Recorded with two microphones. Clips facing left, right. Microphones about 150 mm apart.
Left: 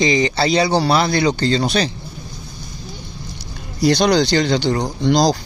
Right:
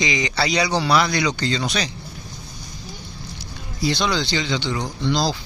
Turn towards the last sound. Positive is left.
turn(degrees=45)  # may be behind; listen again after turning